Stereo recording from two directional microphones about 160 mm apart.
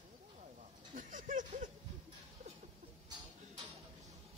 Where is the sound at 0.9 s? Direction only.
55° right (ahead or behind).